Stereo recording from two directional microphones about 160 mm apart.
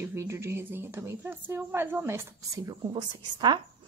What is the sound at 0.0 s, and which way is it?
A woman's voice, 15° right (ahead or behind).